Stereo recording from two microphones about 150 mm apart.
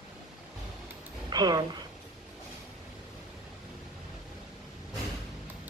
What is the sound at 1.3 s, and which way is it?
Speech, 30° right (ahead or behind).